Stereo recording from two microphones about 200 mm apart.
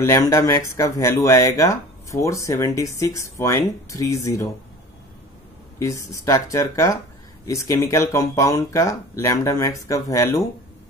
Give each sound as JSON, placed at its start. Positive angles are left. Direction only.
{"t": 0.0, "sound": "speech", "side_deg": 15}
{"t": 5.8, "sound": "speech", "side_deg": 15}